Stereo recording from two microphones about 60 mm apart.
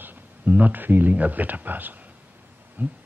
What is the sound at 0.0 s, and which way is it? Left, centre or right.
Speech, right.